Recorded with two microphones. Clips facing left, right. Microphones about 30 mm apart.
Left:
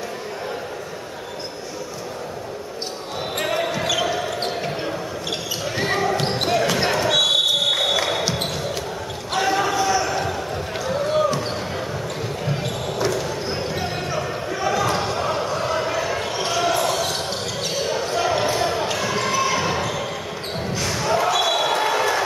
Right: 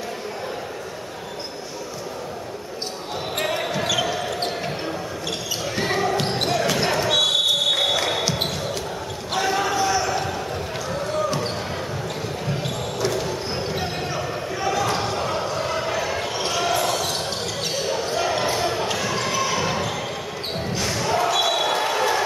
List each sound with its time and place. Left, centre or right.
3.3 s basketball bounce: centre
5.8 s basketball bounce: centre
13.1 s basketball bounce: centre